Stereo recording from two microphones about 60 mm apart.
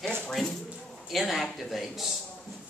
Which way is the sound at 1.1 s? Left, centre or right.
Centre.